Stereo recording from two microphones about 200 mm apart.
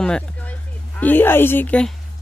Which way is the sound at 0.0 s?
5° left (ahead or behind).